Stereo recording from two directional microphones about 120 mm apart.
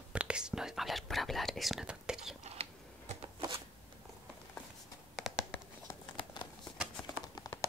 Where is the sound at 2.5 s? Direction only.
60° right (ahead or behind).